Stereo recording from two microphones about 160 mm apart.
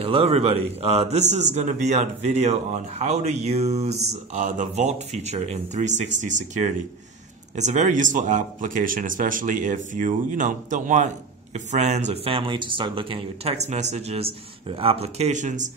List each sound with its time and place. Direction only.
0.0 s a man's voice: 35° right (ahead or behind)